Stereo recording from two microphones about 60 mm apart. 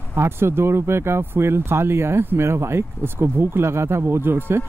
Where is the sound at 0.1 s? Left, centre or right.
Right.